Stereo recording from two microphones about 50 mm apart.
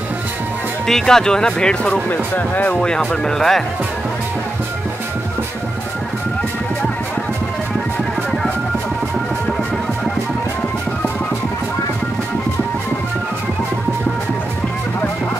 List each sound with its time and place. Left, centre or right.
0.8 s speech: centre
2.0 s speech: left
2.7 s speech: centre